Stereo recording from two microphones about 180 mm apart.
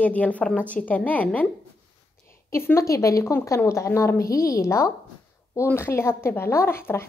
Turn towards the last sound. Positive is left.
turn(degrees=15)  # may be behind; listen again after turning